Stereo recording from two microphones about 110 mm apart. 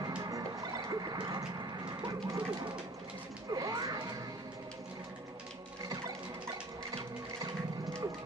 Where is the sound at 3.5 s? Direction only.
35° right (ahead or behind).